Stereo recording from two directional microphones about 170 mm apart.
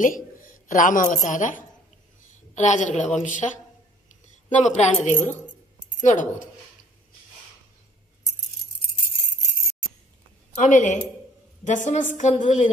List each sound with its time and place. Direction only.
0.7 s a woman's voice: 50° left (ahead or behind)
4.1 s a sound: 45° left (ahead or behind)
6.0 s a woman's voice: 45° left (ahead or behind)
10.5 s a woman's voice: 45° left (ahead or behind)